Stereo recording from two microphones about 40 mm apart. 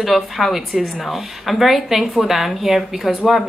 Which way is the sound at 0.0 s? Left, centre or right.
Centre.